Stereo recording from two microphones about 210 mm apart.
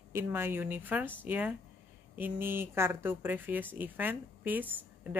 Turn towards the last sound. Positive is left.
turn(degrees=-10)  # may be behind; listen again after turning